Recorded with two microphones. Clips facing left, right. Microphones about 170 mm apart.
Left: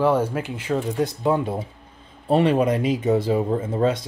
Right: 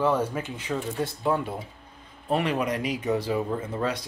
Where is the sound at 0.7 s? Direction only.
20° left (ahead or behind).